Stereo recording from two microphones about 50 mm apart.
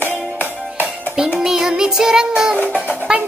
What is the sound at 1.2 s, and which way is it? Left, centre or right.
Music, centre.